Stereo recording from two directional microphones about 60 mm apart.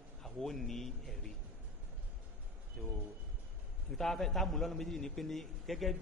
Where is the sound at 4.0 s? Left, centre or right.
Centre.